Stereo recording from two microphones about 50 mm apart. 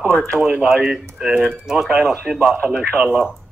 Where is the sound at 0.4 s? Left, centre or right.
Centre.